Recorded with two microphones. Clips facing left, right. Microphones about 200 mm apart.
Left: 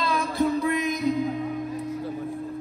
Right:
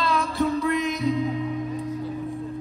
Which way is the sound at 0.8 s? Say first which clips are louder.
Even; centre (ahead or behind).